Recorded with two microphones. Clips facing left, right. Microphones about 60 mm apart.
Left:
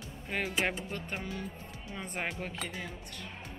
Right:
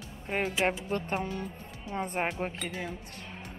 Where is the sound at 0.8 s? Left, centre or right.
Right.